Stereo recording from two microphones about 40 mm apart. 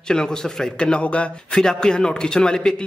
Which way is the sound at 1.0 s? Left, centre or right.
Left.